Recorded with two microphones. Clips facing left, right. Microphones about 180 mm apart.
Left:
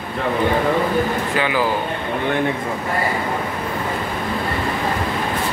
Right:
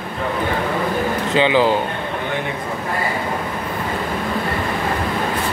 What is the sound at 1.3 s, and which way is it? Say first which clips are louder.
Speech: right 4 dB; 25° right (ahead or behind).